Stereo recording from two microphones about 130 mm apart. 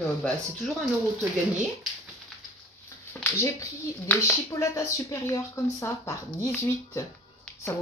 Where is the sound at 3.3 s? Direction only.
20° left (ahead or behind).